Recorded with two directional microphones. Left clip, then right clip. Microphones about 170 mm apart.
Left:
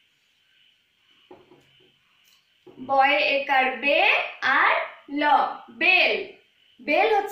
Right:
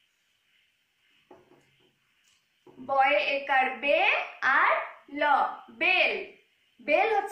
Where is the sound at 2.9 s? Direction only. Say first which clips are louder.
Left 4 dB; 15° left (ahead or behind).